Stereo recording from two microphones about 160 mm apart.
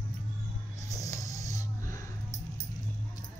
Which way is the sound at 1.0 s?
20° left (ahead or behind).